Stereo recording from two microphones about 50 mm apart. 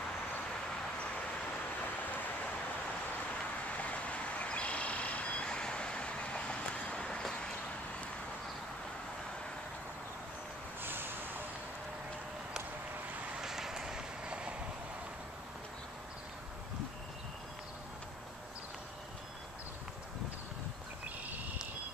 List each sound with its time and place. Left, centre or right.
3.7 s vehicle: left
10.8 s vehicle: right
13.4 s run: centre